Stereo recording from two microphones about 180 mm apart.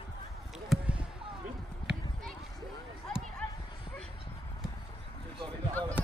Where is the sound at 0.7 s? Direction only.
5° right (ahead or behind).